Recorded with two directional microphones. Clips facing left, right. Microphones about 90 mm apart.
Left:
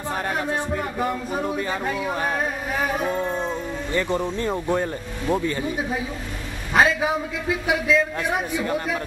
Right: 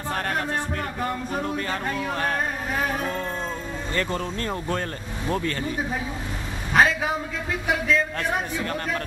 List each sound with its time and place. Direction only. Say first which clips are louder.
0.1 s speech: left 1 dB; 10° left (ahead or behind)
2.9 s music: left 4 dB; 15° left (ahead or behind)
3.9 s speech: left 4 dB; 15° left (ahead or behind)